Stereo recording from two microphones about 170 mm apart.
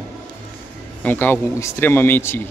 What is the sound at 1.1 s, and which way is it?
Speech, 10° left (ahead or behind).